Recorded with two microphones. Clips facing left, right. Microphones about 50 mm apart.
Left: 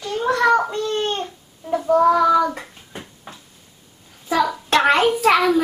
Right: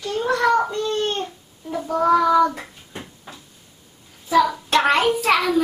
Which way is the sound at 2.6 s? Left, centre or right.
Centre.